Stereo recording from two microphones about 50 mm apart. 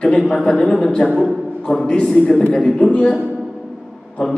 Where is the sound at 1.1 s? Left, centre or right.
Centre.